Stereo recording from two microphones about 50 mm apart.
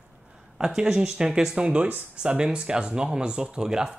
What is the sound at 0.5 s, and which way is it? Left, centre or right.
Speech, centre.